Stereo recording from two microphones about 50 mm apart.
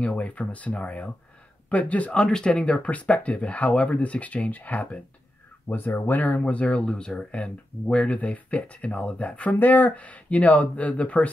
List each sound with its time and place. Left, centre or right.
0.0 s speech: left
2.1 s speech: centre